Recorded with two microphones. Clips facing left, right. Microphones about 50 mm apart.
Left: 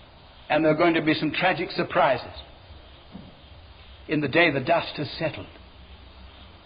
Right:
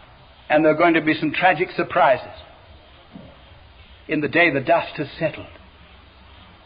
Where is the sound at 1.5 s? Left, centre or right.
Right.